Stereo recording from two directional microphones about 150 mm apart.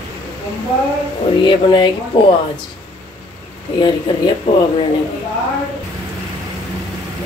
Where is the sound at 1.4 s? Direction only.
30° left (ahead or behind).